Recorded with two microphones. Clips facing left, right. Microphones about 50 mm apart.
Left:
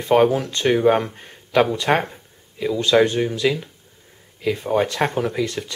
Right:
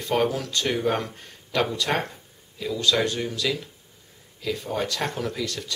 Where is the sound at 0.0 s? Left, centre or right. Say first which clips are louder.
Left 8 dB; left.